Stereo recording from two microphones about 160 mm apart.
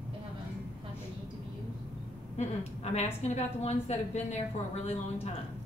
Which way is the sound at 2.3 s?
40° left (ahead or behind).